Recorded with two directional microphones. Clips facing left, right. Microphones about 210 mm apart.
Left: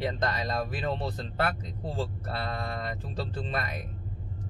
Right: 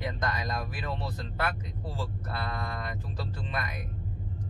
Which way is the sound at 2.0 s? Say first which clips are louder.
Left 3 dB; 35° left (ahead or behind).